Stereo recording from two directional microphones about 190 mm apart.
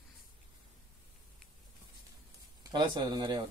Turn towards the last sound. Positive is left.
turn(degrees=-20)  # may be behind; listen again after turning